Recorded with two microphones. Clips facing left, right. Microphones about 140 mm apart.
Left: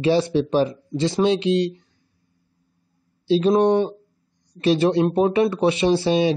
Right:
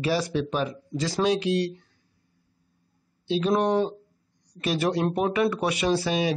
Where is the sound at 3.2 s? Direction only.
30° left (ahead or behind).